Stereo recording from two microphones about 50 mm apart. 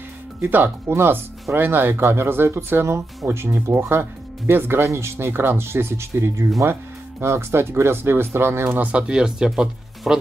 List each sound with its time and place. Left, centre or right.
0.5 s speech: right
4.8 s speech: right
8.9 s speech: centre